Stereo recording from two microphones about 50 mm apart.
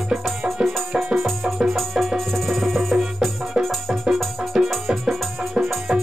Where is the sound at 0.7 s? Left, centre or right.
Centre.